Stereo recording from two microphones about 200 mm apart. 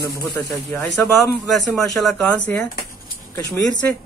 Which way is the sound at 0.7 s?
10° left (ahead or behind).